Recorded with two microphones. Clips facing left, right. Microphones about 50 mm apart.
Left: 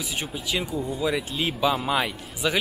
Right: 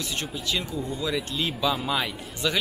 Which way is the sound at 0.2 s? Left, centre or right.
Centre.